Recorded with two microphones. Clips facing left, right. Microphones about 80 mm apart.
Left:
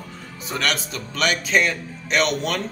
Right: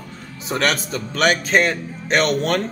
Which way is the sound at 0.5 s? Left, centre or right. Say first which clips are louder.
Right 4 dB; right.